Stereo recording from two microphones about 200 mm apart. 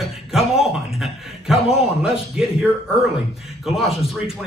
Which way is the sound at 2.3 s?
Centre (ahead or behind).